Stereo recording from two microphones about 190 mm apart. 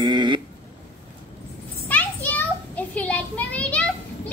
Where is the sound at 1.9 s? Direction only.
10° left (ahead or behind).